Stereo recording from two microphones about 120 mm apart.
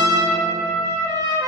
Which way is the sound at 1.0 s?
30° right (ahead or behind).